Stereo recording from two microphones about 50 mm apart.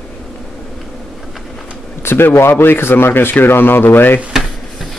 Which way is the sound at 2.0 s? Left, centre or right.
Left.